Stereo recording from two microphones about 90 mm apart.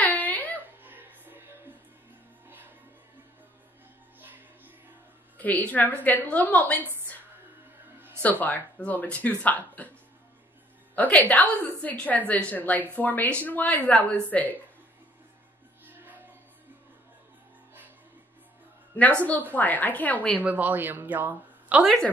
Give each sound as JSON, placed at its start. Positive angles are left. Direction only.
{"t": 0.0, "sound": "a sound", "side_deg": 20}
{"t": 0.8, "sound": "music", "side_deg": -20}
{"t": 2.4, "sound": "music", "side_deg": -20}
{"t": 5.4, "sound": "speech", "side_deg": 15}
{"t": 8.2, "sound": "speech", "side_deg": 20}
{"t": 11.0, "sound": "speech", "side_deg": 15}
{"t": 15.9, "sound": "music", "side_deg": -20}
{"t": 19.5, "sound": "speech", "side_deg": 20}
{"t": 20.3, "sound": "speech", "side_deg": -20}